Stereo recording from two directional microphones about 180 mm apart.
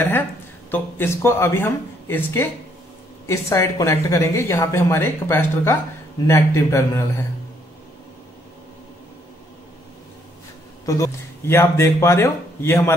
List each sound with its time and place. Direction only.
0.7 s speech: 10° left (ahead or behind)
10.9 s speech: 15° left (ahead or behind)